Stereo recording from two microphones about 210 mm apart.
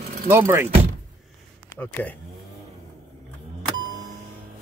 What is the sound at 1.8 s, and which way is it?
Speech, 10° left (ahead or behind).